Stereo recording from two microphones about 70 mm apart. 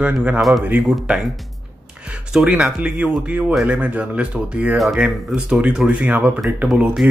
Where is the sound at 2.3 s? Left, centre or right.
Centre.